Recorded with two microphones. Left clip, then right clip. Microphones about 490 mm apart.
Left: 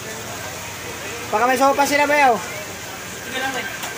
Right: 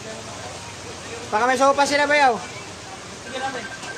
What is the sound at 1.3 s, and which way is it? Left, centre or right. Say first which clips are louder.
Speech: left 1 dB; right.